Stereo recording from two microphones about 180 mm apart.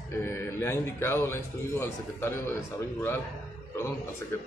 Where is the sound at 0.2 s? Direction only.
15° left (ahead or behind).